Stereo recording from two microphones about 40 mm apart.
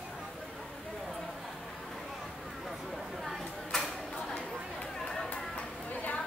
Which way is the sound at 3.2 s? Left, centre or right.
Centre.